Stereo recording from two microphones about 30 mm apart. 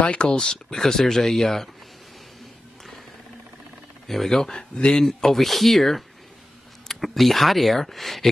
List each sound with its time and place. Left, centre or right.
0.0 s speech: left
0.4 s speech: left
4.1 s speech: centre
4.6 s speech: left
5.2 s speech: centre